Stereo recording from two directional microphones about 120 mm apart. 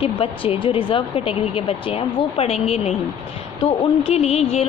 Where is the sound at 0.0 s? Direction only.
50° left (ahead or behind).